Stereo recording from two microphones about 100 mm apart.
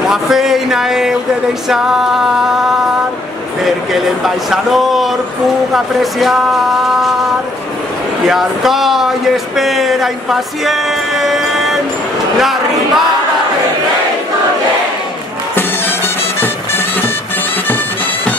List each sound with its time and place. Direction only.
0.1 s speech: 5° right (ahead or behind)
8.3 s speech: centre (ahead or behind)
16.3 s music: 20° left (ahead or behind)